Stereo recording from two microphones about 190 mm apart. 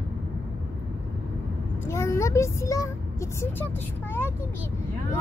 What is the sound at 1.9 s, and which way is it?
Speech, 15° left (ahead or behind).